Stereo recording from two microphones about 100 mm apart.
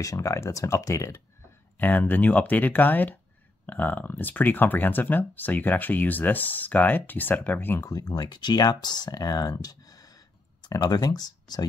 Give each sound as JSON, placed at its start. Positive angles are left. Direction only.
{"t": 0.0, "sound": "speech", "side_deg": 30}
{"t": 1.8, "sound": "speech", "side_deg": 15}
{"t": 7.8, "sound": "speech", "side_deg": 40}